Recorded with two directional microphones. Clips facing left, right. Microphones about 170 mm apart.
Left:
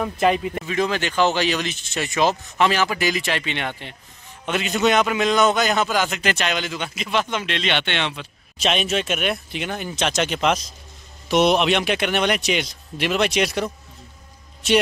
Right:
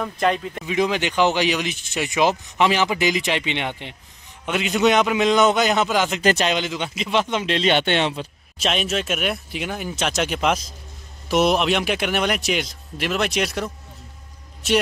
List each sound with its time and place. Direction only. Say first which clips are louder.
0.0 s a man's voice: left 2 dB; 5° left (ahead or behind)
0.7 s a man's voice: right 3 dB; 15° right (ahead or behind)
6.2 s speech: right 4 dB; 35° right (ahead or behind)
6.5 s a man's voice: right 2 dB; 20° right (ahead or behind); by 8.1 s 40° right (ahead or behind)
8.5 s a man's voice: left 1 dB; centre (ahead or behind)